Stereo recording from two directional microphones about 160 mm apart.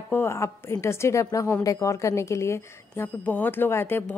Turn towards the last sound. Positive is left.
turn(degrees=15)  # may be behind; listen again after turning